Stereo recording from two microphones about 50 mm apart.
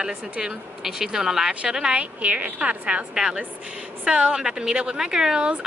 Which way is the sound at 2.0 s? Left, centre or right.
Right.